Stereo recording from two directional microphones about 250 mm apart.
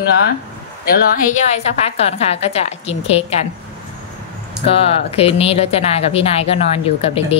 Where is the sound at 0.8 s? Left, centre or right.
Left.